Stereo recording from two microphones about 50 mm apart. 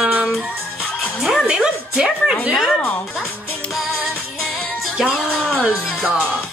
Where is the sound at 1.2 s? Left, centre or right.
Centre.